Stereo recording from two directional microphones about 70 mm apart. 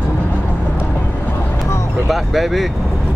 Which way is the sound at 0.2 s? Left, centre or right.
Left.